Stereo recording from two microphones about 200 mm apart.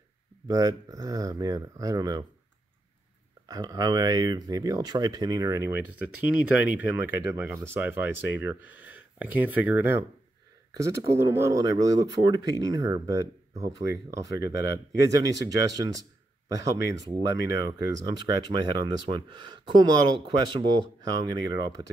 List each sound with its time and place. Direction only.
0.5 s speech: 15° right (ahead or behind)
3.4 s speech: 20° right (ahead or behind)
14.4 s speech: 55° left (ahead or behind)
15.0 s speech: 15° right (ahead or behind)